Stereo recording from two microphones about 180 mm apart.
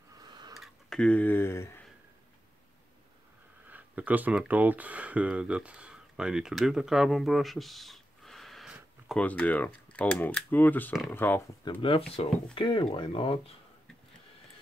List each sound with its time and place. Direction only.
0.2 s a sound: 20° right (ahead or behind)
0.6 s speech: 5° left (ahead or behind)
3.7 s speech: 10° right (ahead or behind)
9.2 s speech: 10° left (ahead or behind)
11.8 s speech: 30° left (ahead or behind)